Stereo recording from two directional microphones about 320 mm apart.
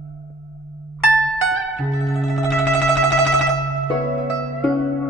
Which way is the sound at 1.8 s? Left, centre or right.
Centre.